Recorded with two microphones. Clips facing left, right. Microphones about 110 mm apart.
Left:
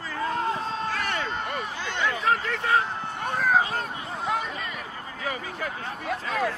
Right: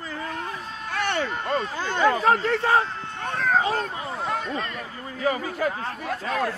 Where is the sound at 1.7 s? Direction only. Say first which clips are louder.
Right 9 dB; 45° right (ahead or behind).